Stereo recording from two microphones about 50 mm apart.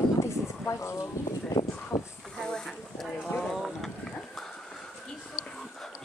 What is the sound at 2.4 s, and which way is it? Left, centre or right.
Speech, centre.